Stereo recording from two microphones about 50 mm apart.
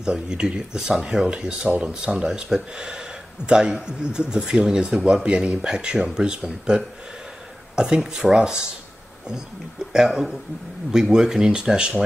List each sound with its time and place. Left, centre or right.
0.0 s speech: centre
7.7 s speech: centre
9.9 s speech: centre